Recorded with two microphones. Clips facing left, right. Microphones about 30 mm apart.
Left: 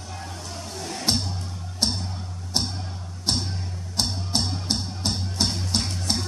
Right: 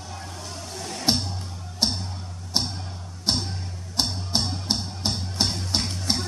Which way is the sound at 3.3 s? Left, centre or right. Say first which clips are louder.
Even; centre.